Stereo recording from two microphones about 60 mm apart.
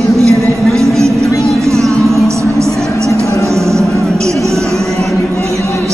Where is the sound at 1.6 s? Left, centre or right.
Right.